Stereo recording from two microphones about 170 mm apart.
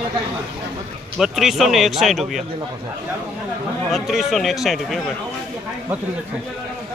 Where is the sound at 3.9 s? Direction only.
Centre (ahead or behind).